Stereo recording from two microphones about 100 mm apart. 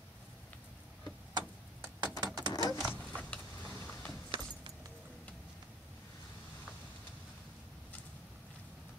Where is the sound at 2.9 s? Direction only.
15° left (ahead or behind).